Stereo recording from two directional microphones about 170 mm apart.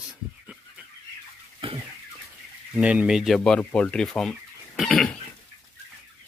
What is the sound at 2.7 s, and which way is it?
Speech, 5° right (ahead or behind).